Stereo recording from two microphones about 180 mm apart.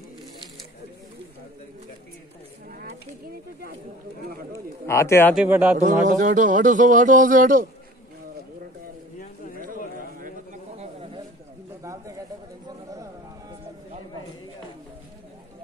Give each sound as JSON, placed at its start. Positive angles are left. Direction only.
{"t": 4.5, "sound": "bird", "side_deg": 15}
{"t": 5.3, "sound": "speech", "side_deg": -10}
{"t": 5.8, "sound": "a man's voice", "side_deg": -45}
{"t": 10.2, "sound": "a sound", "side_deg": -40}